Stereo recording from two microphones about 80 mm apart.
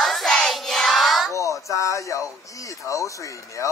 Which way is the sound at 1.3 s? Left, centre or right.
Left.